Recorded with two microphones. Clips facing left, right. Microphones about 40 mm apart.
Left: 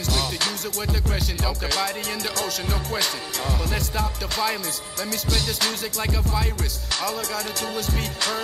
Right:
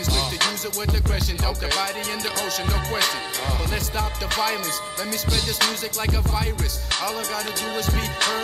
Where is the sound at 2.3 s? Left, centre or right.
Centre.